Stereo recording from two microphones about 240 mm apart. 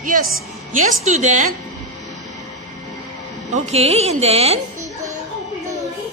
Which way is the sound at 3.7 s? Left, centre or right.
Right.